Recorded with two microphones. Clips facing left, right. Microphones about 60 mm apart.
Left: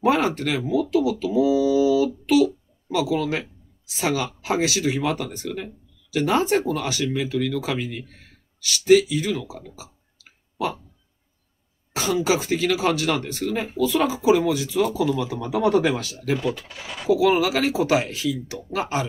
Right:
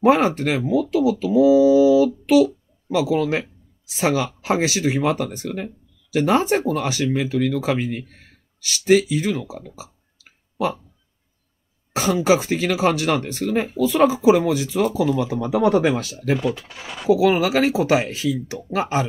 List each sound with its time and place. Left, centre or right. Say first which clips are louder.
0.0 s speech: right 4 dB; right
11.9 s speech: right 4 dB; right